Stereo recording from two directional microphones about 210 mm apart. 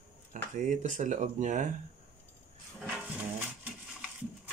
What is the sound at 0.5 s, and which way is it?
Speech, 35° right (ahead or behind).